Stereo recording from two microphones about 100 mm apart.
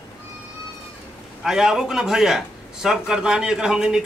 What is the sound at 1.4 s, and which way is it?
A man's voice, 5° right (ahead or behind).